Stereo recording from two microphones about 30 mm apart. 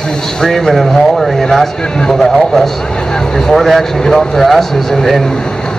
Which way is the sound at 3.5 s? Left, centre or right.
Centre.